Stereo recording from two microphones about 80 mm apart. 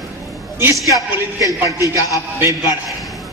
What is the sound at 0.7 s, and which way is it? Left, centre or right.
Speech, centre.